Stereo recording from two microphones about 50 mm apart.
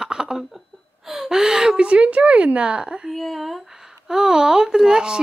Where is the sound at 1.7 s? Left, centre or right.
Right.